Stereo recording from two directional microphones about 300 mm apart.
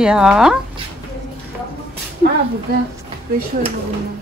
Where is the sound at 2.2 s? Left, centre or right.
Right.